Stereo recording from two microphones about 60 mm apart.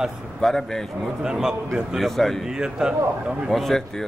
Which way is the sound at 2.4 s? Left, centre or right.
Centre.